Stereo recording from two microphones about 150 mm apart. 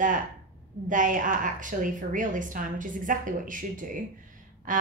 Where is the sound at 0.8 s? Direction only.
60° right (ahead or behind).